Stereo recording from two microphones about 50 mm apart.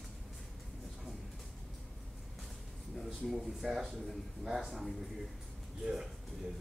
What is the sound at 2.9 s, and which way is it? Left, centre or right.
Speech, centre.